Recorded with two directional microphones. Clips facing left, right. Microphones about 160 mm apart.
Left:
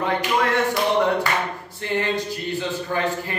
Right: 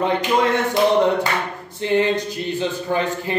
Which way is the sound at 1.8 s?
20° right (ahead or behind).